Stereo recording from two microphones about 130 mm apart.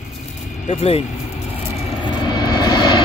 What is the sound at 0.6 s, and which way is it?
Speech, 55° left (ahead or behind).